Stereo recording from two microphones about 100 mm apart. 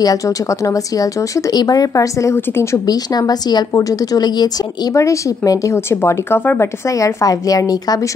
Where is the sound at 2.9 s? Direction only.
40° left (ahead or behind); by 6.6 s 20° left (ahead or behind).